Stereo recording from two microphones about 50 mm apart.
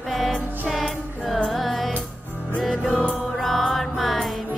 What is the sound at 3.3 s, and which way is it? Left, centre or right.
Music, centre.